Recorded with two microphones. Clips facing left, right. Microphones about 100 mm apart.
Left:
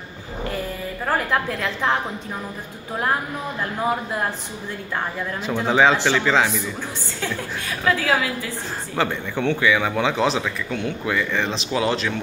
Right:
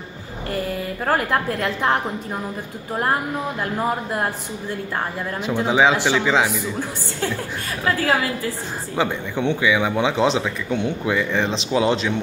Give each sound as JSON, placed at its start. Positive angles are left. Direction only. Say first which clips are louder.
{"t": 1.0, "sound": "a woman's voice", "louder": "right 2 dB", "side_deg": -50}
{"t": 5.4, "sound": "speech", "louder": "even", "side_deg": -10}
{"t": 8.9, "sound": "speech", "louder": "right 1 dB", "side_deg": -15}